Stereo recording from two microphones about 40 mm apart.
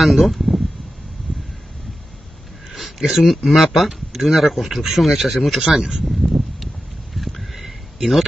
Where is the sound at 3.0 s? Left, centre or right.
Centre.